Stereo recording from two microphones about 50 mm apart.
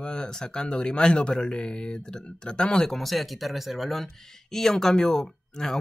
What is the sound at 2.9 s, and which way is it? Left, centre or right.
Speech, centre.